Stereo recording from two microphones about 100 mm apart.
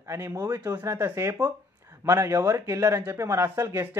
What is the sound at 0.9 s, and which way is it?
A man's voice, 25° right (ahead or behind).